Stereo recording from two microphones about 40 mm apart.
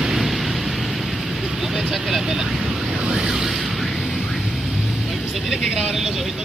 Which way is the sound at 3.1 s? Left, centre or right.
Centre.